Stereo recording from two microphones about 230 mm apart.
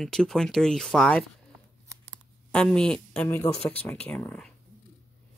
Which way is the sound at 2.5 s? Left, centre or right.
Centre.